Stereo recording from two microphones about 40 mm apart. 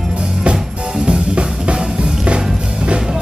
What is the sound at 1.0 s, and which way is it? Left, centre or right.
Music, right.